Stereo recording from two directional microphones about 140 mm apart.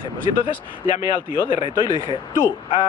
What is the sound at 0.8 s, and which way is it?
Speech, 55° left (ahead or behind).